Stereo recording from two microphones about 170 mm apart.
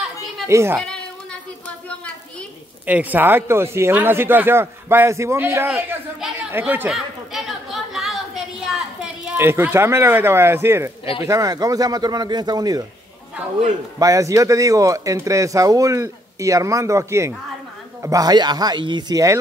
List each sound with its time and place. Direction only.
0.5 s speech: 15° right (ahead or behind)
0.7 s a sound: 5° left (ahead or behind)
2.9 s speech: 10° right (ahead or behind)
5.7 s chatter: 5° right (ahead or behind)
8.6 s speech: 5° right (ahead or behind); by 12.8 s 20° right (ahead or behind)
13.9 s speech: 20° right (ahead or behind)